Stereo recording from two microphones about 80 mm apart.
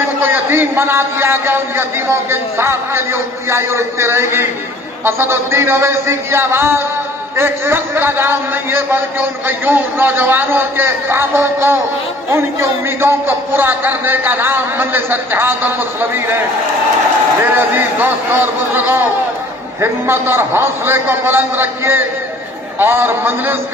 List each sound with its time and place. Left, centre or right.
0.2 s a man's voice: right
17.5 s a man's voice: right